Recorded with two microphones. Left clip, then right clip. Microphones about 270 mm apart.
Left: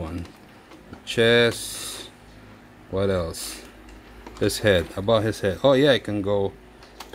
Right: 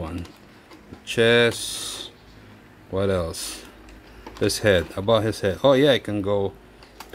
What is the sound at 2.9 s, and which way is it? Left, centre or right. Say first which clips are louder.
Speech: even; centre.